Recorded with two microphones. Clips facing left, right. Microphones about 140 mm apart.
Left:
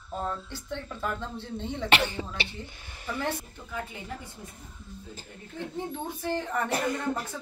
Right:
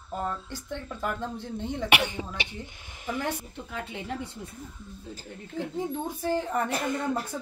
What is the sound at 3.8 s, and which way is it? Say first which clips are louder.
Speech: right 5 dB; 70° right (ahead or behind).